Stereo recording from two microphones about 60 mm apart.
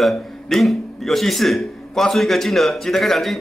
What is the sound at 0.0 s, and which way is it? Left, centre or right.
Speech, centre.